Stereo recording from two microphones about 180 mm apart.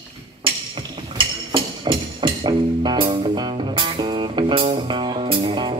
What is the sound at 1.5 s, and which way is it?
Music, 25° right (ahead or behind).